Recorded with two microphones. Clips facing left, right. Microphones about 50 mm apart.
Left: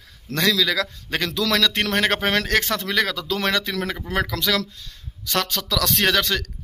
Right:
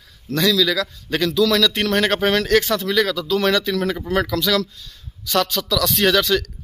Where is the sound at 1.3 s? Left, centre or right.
Left.